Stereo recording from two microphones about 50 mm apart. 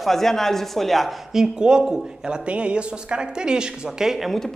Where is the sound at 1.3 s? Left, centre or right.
Centre.